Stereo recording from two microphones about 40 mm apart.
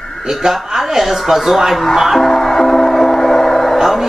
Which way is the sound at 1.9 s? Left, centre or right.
Centre.